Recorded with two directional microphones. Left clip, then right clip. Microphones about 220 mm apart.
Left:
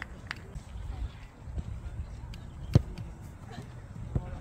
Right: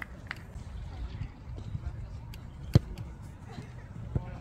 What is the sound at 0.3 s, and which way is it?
Run, 45° left (ahead or behind).